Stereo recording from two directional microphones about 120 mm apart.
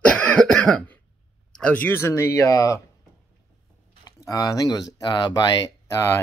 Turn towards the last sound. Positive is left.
turn(degrees=35)  # may be behind; listen again after turning